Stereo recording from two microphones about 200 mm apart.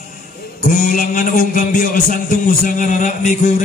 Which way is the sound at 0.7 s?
40° left (ahead or behind).